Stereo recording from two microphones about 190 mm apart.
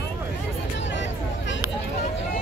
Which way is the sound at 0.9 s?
75° left (ahead or behind).